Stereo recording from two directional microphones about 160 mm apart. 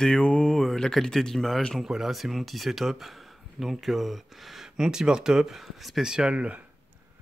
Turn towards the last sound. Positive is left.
turn(degrees=-5)  # may be behind; listen again after turning